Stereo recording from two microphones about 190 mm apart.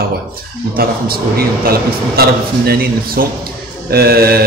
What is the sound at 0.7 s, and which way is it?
A man's voice, 50° right (ahead or behind).